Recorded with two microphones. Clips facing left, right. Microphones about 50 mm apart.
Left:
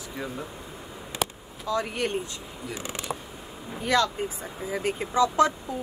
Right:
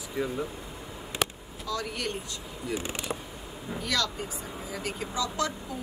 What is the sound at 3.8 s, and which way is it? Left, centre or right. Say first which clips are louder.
Speech: left 7 dB; left.